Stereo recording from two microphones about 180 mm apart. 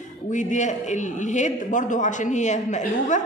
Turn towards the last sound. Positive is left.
turn(degrees=40)  # may be behind; listen again after turning